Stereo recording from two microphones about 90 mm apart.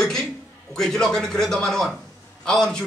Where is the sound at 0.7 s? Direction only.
5° left (ahead or behind).